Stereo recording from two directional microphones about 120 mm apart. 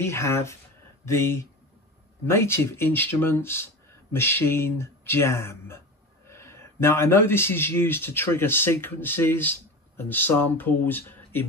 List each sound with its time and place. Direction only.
0.0 s speech: 20° left (ahead or behind)